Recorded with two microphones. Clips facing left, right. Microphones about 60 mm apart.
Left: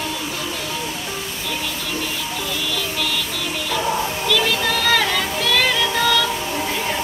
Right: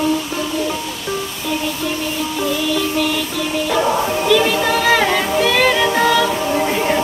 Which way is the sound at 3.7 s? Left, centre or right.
Right.